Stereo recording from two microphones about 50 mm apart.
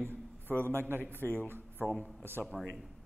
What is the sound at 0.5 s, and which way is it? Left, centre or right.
Speech, left.